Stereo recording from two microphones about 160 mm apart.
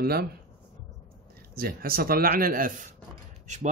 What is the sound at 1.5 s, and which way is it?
Speech, 70° right (ahead or behind).